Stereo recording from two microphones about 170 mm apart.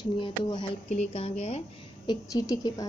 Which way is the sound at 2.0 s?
20° left (ahead or behind).